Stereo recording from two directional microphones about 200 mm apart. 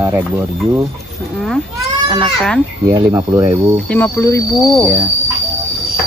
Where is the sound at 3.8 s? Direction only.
10° left (ahead or behind).